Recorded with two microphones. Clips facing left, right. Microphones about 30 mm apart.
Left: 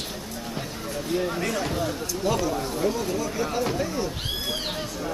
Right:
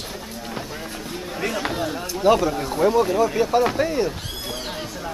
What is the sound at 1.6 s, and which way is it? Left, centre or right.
Speech, right.